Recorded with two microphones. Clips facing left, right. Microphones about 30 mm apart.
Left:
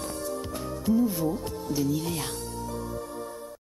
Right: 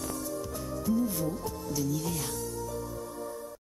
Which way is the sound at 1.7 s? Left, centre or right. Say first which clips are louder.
Left 5 dB; left.